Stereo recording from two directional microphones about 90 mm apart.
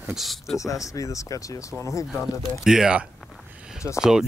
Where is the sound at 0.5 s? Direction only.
35° left (ahead or behind).